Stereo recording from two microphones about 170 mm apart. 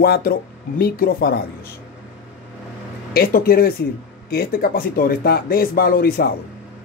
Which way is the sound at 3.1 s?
60° left (ahead or behind).